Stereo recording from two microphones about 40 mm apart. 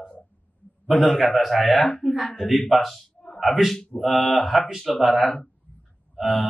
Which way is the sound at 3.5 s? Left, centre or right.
Centre.